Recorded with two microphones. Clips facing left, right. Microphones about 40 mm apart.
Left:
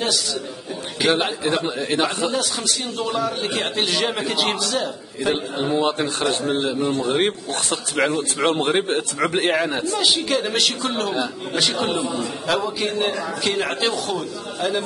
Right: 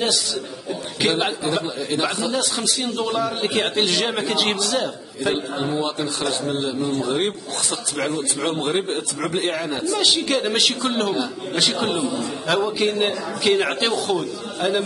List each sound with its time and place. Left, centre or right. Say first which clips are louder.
0.0 s a man's voice: right 1 dB; centre
1.4 s a man's voice: left 1 dB; left
2.3 s a man's voice: even; centre
5.3 s a man's voice: left 2 dB; centre
5.9 s a man's voice: left 2 dB; left
9.6 s a man's voice: left 3 dB; left
9.9 s a man's voice: right 1 dB; centre
11.9 s a man's voice: even; left
12.4 s a man's voice: right 3 dB; centre